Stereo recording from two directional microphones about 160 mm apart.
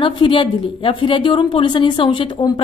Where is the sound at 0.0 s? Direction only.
30° left (ahead or behind).